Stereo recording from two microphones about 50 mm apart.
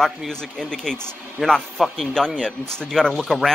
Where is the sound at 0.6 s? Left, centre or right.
Centre.